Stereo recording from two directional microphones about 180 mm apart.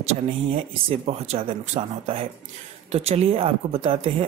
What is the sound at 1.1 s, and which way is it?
Speech, 35° right (ahead or behind).